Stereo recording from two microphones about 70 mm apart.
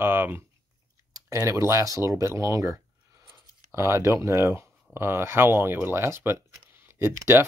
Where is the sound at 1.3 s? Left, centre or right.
Right.